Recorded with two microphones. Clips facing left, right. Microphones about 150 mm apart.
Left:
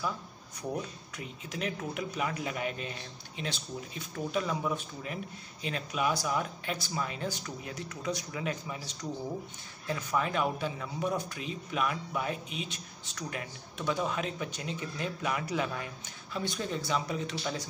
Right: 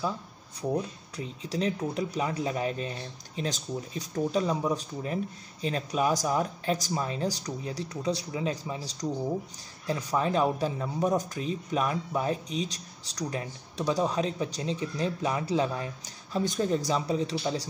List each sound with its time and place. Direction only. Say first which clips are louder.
1.1 s speech: right 8 dB; 35° right (ahead or behind)
16.3 s speech: right 7 dB; 40° right (ahead or behind)